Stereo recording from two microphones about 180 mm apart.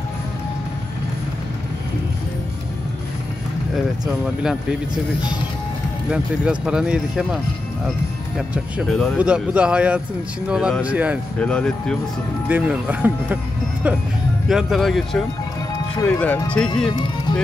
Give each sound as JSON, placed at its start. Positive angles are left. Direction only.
{"t": 4.4, "sound": "speech", "side_deg": -5}
{"t": 6.0, "sound": "speech", "side_deg": -5}
{"t": 8.4, "sound": "speech", "side_deg": 0}
{"t": 11.3, "sound": "speech", "side_deg": 5}
{"t": 12.4, "sound": "speech", "side_deg": -10}
{"t": 16.9, "sound": "music", "side_deg": 25}